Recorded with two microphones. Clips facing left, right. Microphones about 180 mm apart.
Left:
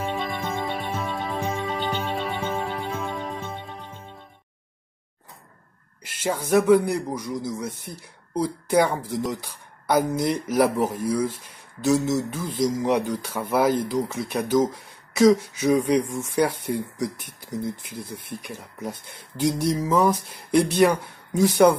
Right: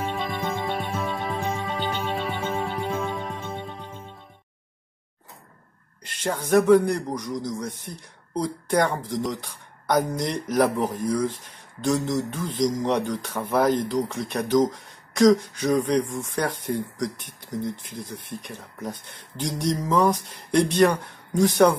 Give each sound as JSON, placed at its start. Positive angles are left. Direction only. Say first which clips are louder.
{"t": 0.0, "sound": "music", "louder": "even", "side_deg": 0}
{"t": 6.0, "sound": "a man's voice", "louder": "left 1 dB", "side_deg": 5}